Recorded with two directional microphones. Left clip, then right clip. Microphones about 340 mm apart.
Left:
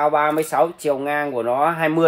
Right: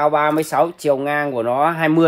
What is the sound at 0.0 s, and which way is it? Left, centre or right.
Speech, centre.